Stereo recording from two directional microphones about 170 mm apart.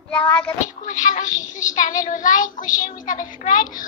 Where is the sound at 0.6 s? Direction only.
50° left (ahead or behind).